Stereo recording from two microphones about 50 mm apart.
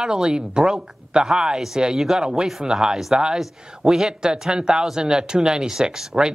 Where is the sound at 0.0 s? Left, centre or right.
Centre.